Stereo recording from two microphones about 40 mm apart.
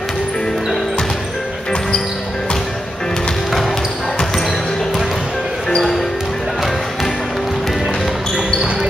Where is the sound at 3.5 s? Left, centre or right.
Centre.